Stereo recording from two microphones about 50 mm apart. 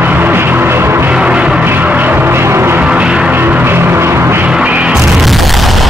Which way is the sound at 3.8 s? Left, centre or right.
Right.